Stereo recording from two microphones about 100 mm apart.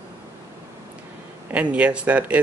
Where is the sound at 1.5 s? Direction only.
15° right (ahead or behind).